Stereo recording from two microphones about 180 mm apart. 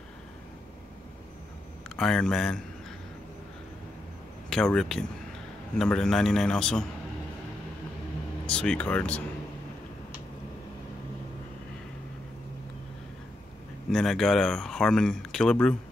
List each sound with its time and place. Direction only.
2.0 s speech: 5° left (ahead or behind)
4.5 s speech: 5° left (ahead or behind)
8.5 s speech: 5° left (ahead or behind)
13.8 s speech: centre (ahead or behind)